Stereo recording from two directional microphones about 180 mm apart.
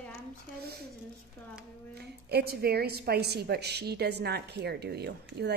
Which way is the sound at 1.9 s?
65° right (ahead or behind).